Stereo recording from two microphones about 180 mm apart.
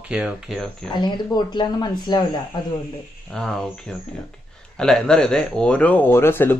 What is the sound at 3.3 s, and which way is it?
Speech, centre (ahead or behind).